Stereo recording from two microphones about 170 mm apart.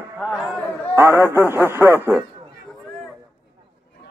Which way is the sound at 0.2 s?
5° right (ahead or behind).